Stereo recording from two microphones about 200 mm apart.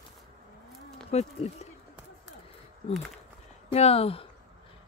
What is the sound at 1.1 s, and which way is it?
Speech, 30° left (ahead or behind).